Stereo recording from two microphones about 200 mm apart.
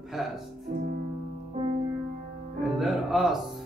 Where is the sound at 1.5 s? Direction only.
30° right (ahead or behind).